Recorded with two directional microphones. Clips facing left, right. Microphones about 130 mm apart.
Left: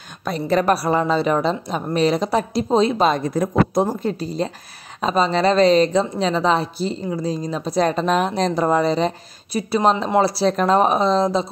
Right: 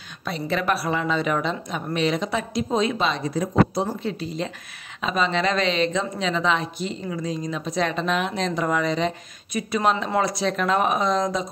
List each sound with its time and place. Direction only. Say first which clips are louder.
0.2 s a woman's voice: left 6 dB; 45° left (ahead or behind)
3.1 s a woman's voice: left 5 dB; 50° left (ahead or behind); by 11.5 s 30° left (ahead or behind)